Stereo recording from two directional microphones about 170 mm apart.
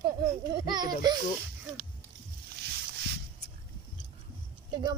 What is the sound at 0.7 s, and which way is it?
Speech, 25° right (ahead or behind).